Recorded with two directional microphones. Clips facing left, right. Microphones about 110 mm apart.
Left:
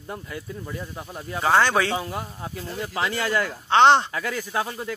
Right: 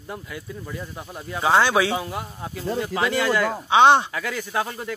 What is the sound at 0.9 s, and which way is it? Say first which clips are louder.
Speech: even; centre (ahead or behind).